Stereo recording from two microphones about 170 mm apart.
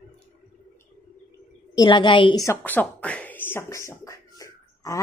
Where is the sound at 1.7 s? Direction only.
25° left (ahead or behind).